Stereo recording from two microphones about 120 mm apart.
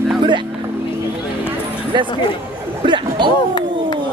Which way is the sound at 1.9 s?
40° right (ahead or behind).